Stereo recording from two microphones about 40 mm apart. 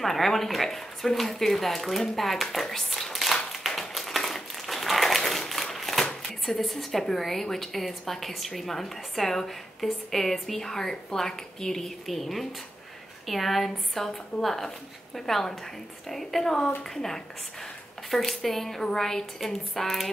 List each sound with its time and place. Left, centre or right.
0.0 s speech: centre
3.6 s a sound: centre
6.4 s a woman's voice: centre